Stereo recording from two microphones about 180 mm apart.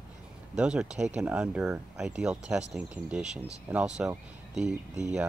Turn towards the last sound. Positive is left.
turn(degrees=-5)  # may be behind; listen again after turning